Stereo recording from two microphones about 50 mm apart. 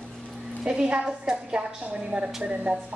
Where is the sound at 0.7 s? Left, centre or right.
Centre.